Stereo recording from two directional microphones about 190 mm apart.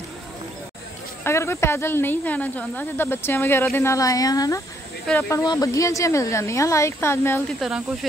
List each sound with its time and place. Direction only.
1.2 s speech: 15° left (ahead or behind)
7.6 s speech: centre (ahead or behind)